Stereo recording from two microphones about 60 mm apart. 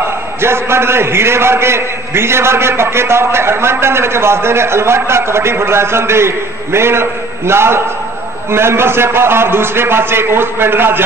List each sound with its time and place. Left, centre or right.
0.4 s a man's voice: right